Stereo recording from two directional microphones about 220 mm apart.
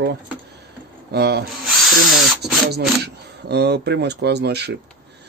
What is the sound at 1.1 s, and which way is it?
Speech, 50° right (ahead or behind).